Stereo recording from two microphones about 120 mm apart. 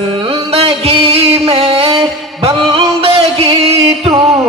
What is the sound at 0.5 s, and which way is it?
Music, 55° right (ahead or behind).